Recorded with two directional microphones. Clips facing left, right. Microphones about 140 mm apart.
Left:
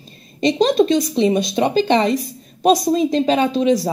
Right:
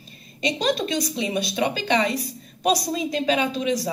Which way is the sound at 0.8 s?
25° left (ahead or behind).